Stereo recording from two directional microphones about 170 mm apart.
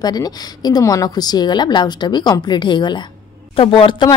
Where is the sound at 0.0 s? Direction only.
25° left (ahead or behind).